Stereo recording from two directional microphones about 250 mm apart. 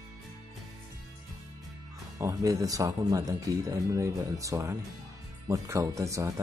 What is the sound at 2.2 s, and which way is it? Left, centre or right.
Speech, centre.